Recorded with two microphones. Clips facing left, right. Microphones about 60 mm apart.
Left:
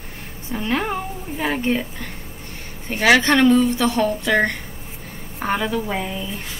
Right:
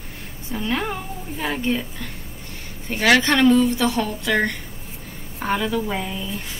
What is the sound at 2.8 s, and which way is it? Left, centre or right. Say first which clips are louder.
A woman's voice: left 2 dB; centre.